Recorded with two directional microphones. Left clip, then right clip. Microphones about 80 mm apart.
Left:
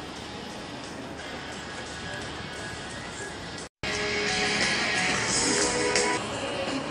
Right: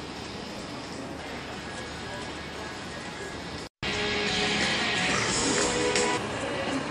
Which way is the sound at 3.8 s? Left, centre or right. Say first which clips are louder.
Even; left.